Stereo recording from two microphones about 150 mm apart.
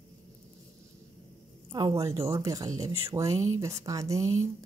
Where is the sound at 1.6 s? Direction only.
25° right (ahead or behind).